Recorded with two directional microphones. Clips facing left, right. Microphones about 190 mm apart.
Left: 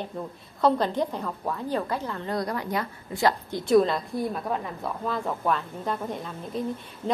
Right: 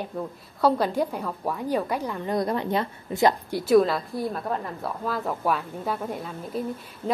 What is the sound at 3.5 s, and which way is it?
Speech, 5° right (ahead or behind).